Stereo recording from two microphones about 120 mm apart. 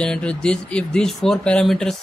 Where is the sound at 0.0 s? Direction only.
10° left (ahead or behind).